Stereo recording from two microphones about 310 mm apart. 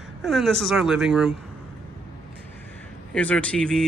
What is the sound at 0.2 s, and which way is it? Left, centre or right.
Speech, centre.